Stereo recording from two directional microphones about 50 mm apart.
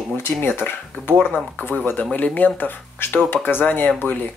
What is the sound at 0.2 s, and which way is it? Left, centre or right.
Speech, left.